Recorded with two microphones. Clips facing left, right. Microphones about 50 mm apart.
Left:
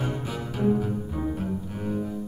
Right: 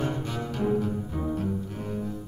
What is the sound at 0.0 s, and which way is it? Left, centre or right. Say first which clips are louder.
Cello: right 1 dB; centre.